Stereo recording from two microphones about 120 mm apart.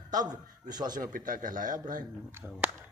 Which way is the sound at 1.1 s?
90° right.